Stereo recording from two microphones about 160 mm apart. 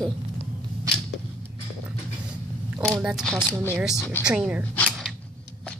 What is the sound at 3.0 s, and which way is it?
Speech, 5° right (ahead or behind).